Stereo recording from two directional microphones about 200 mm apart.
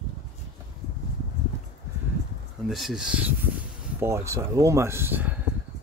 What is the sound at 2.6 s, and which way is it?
Speech, centre (ahead or behind).